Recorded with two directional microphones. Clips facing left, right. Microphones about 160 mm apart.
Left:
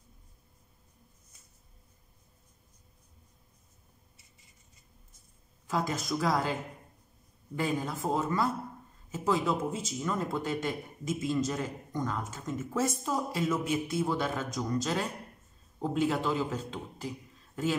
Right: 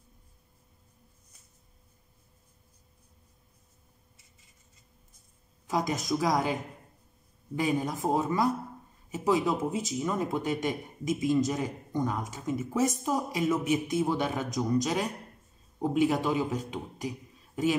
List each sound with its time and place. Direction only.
5.7 s speech: 15° right (ahead or behind)